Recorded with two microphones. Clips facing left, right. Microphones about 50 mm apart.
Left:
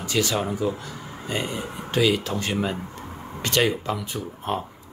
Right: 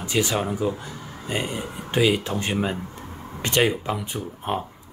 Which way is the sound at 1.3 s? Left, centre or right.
Centre.